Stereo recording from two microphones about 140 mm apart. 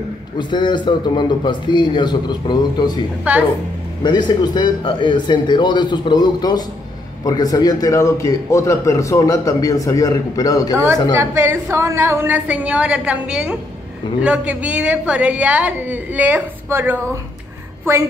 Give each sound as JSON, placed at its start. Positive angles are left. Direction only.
{"t": 0.4, "sound": "speech", "side_deg": 35}
{"t": 3.3, "sound": "a woman's voice", "side_deg": -10}
{"t": 4.0, "sound": "a man's voice", "side_deg": 30}
{"t": 11.1, "sound": "a woman's voice", "side_deg": -15}